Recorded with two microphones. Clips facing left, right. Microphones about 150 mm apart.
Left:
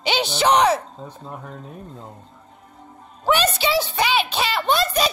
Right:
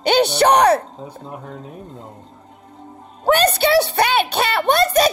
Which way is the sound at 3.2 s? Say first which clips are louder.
Right 5 dB; 55° right (ahead or behind).